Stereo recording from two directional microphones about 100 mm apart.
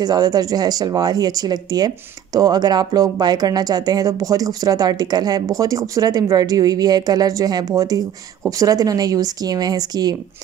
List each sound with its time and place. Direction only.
0.0 s a woman's voice: 40° right (ahead or behind)